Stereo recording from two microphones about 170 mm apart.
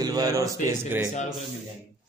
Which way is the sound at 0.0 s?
20° right (ahead or behind).